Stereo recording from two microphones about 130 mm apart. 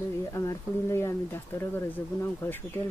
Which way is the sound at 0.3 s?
25° left (ahead or behind).